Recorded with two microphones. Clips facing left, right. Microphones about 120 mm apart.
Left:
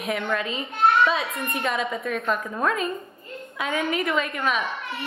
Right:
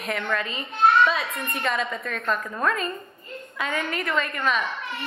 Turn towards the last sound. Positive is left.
turn(degrees=5)  # may be behind; listen again after turning